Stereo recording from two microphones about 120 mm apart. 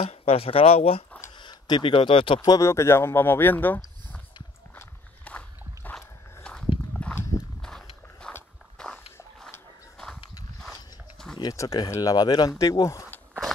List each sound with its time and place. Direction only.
0.1 s speech: 60° left (ahead or behind)
1.4 s speech: 40° left (ahead or behind)
2.5 s speech: 25° left (ahead or behind)
4.7 s a sound: 10° left (ahead or behind)
6.4 s a sound: 5° left (ahead or behind)
7.6 s walk: 5° left (ahead or behind)
8.7 s a sound: 5° left (ahead or behind)
10.6 s dog: 5° left (ahead or behind)
11.3 s speech: 30° left (ahead or behind)